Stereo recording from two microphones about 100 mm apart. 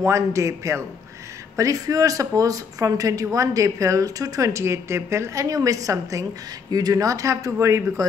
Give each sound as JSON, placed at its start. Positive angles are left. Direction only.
{"t": 0.0, "sound": "speech", "side_deg": -30}